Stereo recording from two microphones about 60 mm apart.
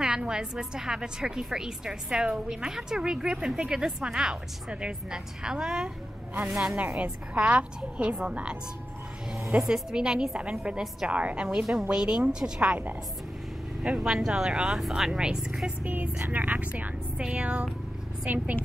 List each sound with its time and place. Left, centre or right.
0.0 s a woman's voice: centre
7.0 s a woman's voice: right
9.7 s a woman's voice: centre
13.8 s a woman's voice: centre
15.8 s a woman's voice: right